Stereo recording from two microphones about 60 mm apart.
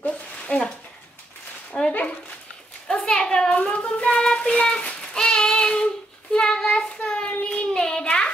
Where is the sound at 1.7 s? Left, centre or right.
Centre.